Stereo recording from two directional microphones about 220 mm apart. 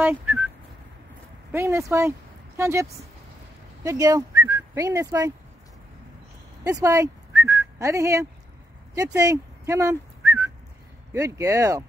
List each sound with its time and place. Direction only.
0.0 s speech: 10° right (ahead or behind)
1.5 s speech: 10° right (ahead or behind)
6.6 s speech: 15° right (ahead or behind)